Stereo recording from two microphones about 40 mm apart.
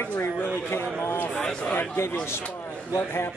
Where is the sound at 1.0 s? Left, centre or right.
Left.